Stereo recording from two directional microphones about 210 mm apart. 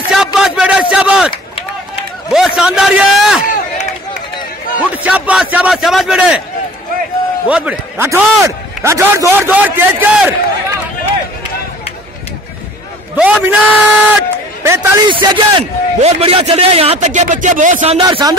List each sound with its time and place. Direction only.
0.1 s a sound: centre (ahead or behind)
1.3 s run: 25° left (ahead or behind)
2.3 s a man's voice: 5° right (ahead or behind)
3.4 s run: 40° left (ahead or behind)
4.9 s a man's voice: 5° right (ahead or behind)
7.4 s a man's voice: 5° right (ahead or behind)
13.1 s a man's voice: 10° right (ahead or behind); by 17.9 s 35° right (ahead or behind)
17.9 s a man's voice: 20° right (ahead or behind)